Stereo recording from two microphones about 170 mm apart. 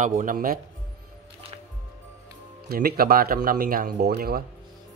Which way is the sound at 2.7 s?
60° right (ahead or behind).